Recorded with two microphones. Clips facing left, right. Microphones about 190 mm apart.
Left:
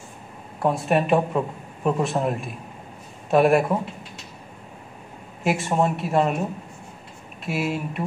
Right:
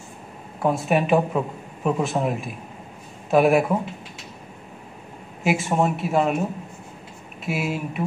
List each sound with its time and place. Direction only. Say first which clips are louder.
0.6 s speech: even; centre (ahead or behind)
5.4 s speech: right 1 dB; centre (ahead or behind)
7.4 s speech: even; centre (ahead or behind)